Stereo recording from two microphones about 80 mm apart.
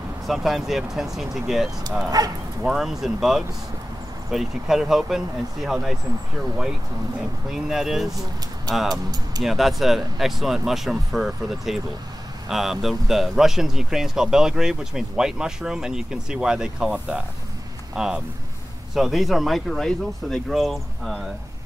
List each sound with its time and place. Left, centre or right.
0.3 s speech: centre
2.0 s speech: right
2.6 s speech: centre
7.5 s speech: centre
9.4 s speech: centre